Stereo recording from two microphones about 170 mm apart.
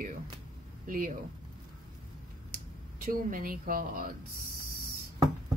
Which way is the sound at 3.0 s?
55° right (ahead or behind).